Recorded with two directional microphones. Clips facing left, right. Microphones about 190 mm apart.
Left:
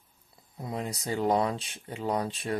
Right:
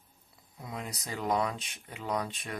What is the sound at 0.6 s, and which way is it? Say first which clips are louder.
Speech: left 6 dB; 30° left (ahead or behind).